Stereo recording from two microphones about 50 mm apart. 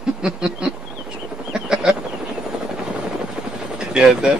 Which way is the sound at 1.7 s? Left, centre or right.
Centre.